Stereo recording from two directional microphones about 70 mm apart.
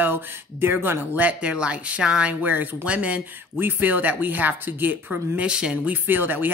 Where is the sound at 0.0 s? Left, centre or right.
Right; by 2.3 s centre.